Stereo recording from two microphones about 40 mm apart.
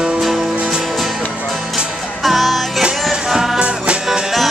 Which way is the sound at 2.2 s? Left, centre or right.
Centre.